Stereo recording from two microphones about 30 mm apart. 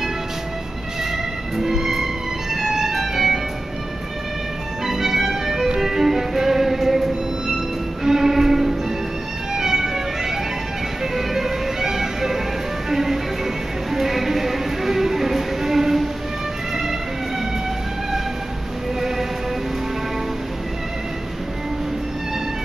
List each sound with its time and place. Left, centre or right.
1.1 s music: centre
4.8 s music: centre
18.9 s music: centre